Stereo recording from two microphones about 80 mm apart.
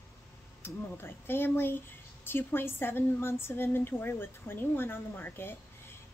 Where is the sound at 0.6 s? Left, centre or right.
Left.